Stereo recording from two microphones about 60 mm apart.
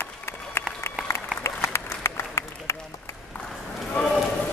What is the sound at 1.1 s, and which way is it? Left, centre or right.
Applause, left.